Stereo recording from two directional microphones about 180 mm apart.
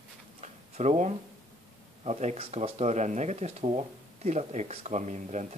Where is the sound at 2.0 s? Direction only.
35° right (ahead or behind).